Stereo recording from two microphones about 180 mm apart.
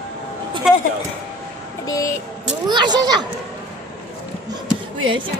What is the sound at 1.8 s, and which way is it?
Vehicle, 20° left (ahead or behind).